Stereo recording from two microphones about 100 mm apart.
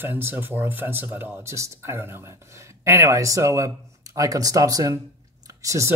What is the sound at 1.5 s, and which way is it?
Speech, 30° right (ahead or behind).